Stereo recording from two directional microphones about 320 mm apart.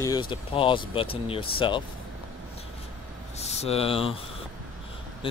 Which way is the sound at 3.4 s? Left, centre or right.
Centre.